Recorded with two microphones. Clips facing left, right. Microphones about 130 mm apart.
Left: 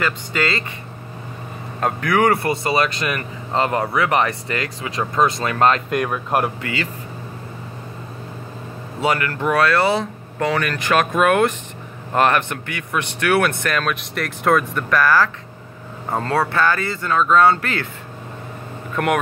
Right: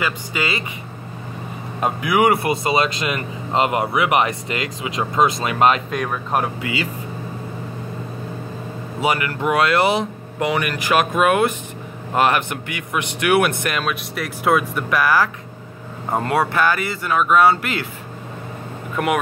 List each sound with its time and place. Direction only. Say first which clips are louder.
0.0 s speech: left 2 dB; 15° right (ahead or behind)
1.8 s speech: even; 10° right (ahead or behind)
5.9 s speech: left 2 dB; 5° left (ahead or behind)
6.6 s speech: right 1 dB; 10° right (ahead or behind)
9.0 s speech: even; 15° right (ahead or behind)
19.0 s speech: left 1 dB; 5° right (ahead or behind)